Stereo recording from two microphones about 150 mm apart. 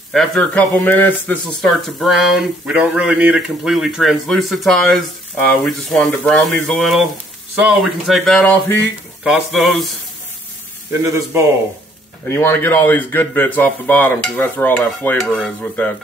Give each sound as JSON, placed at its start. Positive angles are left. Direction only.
{"t": 0.1, "sound": "speech", "side_deg": 5}
{"t": 10.9, "sound": "speech", "side_deg": -20}
{"t": 12.3, "sound": "speech", "side_deg": 15}